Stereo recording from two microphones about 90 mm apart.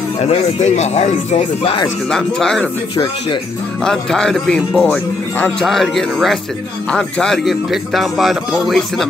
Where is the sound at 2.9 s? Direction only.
65° left (ahead or behind).